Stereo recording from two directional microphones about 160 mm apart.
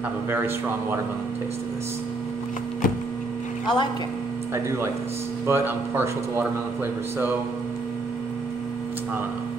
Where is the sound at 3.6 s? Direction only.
30° left (ahead or behind).